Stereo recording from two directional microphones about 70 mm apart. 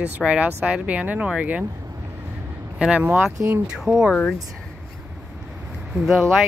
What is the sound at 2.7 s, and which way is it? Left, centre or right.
Speech, centre.